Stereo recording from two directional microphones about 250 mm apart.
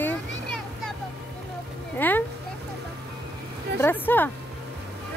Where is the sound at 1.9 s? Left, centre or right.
Centre.